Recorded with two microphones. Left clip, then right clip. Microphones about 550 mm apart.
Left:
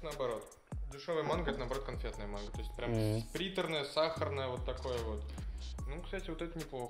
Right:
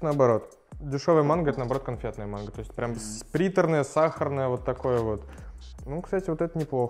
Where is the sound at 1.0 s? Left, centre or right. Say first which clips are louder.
Right 13 dB; right.